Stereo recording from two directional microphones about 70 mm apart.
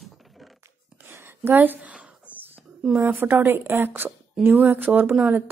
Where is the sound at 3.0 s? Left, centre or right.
Right.